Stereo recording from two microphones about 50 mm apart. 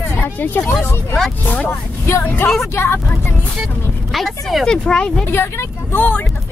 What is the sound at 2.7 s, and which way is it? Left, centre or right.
Speech, left.